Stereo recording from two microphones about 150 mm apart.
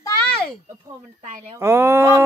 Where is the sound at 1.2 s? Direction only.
50° right (ahead or behind).